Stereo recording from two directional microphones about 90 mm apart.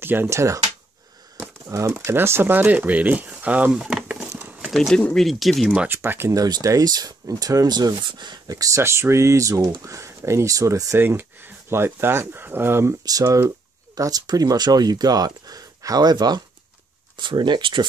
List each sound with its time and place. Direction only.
0.0 s speech: 25° right (ahead or behind)
1.7 s speech: 35° right (ahead or behind); by 3.8 s 15° right (ahead or behind)
3.8 s wood: 10° right (ahead or behind)
4.3 s a sound: 25° right (ahead or behind)
4.7 s speech: centre (ahead or behind)
5.9 s speech: 25° right (ahead or behind)
6.3 s speech: 40° right (ahead or behind); by 12.9 s 25° right (ahead or behind)
13.0 s speech: 40° right (ahead or behind)
17.2 s speech: 60° right (ahead or behind)